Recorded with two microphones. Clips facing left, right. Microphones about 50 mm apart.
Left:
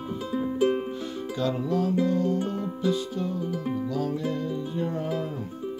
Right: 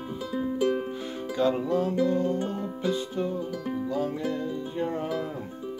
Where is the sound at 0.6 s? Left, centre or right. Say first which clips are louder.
Left 2 dB; centre.